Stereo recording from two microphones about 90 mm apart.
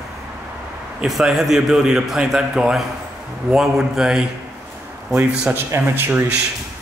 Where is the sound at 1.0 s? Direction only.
5° right (ahead or behind).